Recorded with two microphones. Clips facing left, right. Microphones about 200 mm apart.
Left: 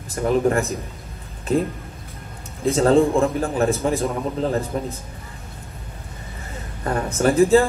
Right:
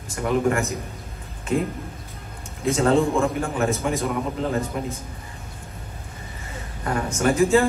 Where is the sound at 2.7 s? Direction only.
35° left (ahead or behind).